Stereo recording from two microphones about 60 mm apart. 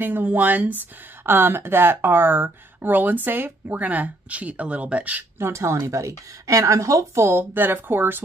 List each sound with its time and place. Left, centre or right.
0.0 s speech: right
5.4 s a woman's voice: right
7.2 s speech: right